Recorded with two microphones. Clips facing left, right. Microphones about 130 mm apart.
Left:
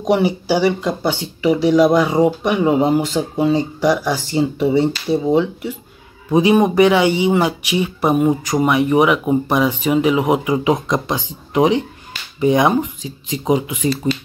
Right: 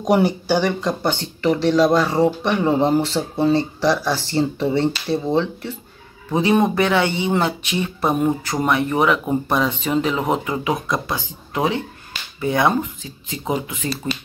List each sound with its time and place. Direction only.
0.0 s speech: 5° left (ahead or behind)